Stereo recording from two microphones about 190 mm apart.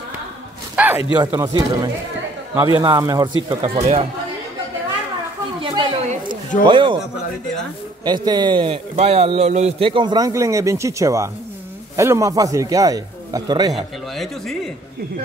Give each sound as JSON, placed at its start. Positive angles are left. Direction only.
{"t": 0.7, "sound": "a sound", "side_deg": -10}
{"t": 1.1, "sound": "a man's voice", "side_deg": -20}
{"t": 3.7, "sound": "speech", "side_deg": -35}
{"t": 5.6, "sound": "a sound", "side_deg": -25}
{"t": 6.6, "sound": "a man's voice", "side_deg": -25}
{"t": 8.0, "sound": "a man's voice", "side_deg": -20}
{"t": 13.7, "sound": "speech", "side_deg": 0}